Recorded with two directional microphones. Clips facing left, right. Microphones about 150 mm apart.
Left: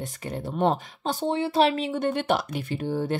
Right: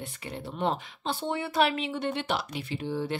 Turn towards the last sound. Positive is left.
turn(degrees=45)  # may be behind; listen again after turning